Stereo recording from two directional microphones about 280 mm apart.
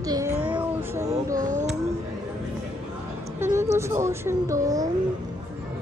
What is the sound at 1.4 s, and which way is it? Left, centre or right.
Speech, right.